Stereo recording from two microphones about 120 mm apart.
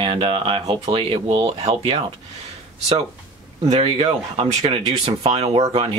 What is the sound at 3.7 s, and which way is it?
Speech, 55° right (ahead or behind).